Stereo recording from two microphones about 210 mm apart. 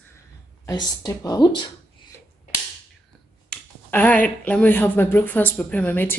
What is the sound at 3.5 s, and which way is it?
Speech, 5° left (ahead or behind).